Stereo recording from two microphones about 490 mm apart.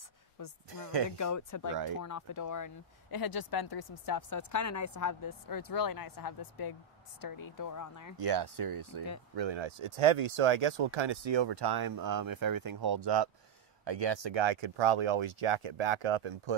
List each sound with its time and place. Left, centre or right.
0.7 s speech: right
1.1 s speech: left
8.3 s speech: right
9.3 s speech: right